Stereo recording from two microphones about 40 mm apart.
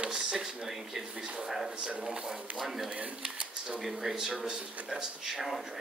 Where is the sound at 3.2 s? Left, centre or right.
Right.